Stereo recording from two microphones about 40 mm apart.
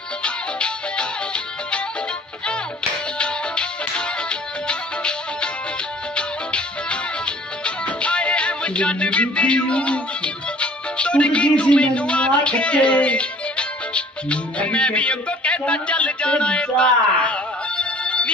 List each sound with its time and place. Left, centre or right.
0.2 s music: left
3.2 s music: left